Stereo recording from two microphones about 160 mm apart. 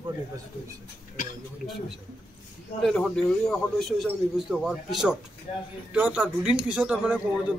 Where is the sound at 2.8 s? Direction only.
5° left (ahead or behind).